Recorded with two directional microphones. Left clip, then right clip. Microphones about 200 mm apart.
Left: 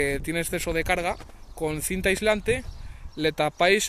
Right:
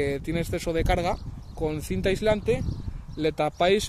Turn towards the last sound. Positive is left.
turn(degrees=-10)  # may be behind; listen again after turning